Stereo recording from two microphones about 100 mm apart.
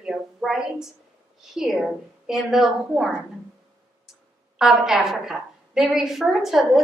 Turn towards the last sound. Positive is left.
turn(degrees=0)  # may be behind; listen again after turning